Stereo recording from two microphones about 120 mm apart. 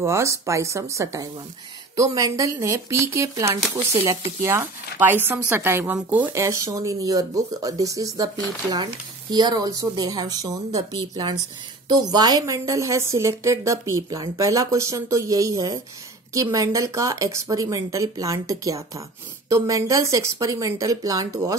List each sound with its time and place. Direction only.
0.0 s speech: 25° right (ahead or behind)
6.3 s speech: 25° right (ahead or behind)
9.3 s speech: 35° right (ahead or behind)